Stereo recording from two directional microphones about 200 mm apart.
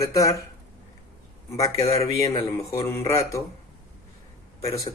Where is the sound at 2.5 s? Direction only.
15° left (ahead or behind).